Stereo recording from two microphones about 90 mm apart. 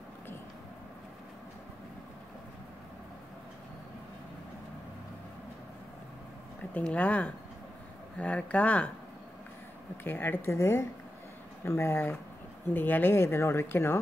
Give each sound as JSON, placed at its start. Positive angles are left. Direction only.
{"t": 6.7, "sound": "speech", "side_deg": 15}
{"t": 10.0, "sound": "speech", "side_deg": 25}